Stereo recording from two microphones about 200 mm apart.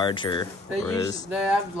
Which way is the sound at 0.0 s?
25° left (ahead or behind).